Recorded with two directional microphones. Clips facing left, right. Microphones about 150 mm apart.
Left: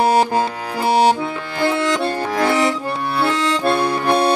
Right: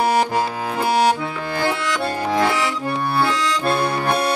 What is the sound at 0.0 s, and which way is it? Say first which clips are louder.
Music: left 3 dB; 30° left (ahead or behind).